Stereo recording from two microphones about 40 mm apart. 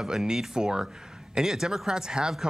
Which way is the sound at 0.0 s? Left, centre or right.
Centre.